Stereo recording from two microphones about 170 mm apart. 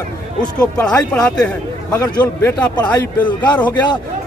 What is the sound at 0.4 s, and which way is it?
Speech, 25° left (ahead or behind).